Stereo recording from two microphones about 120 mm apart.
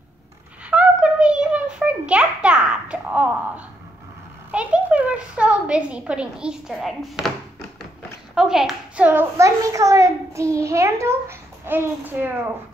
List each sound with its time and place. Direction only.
0.7 s a sound: 10° right (ahead or behind)
4.5 s a woman's voice: 10° right (ahead or behind)
8.4 s a child's voice: 5° right (ahead or behind)
9.6 s a child's voice: 25° right (ahead or behind)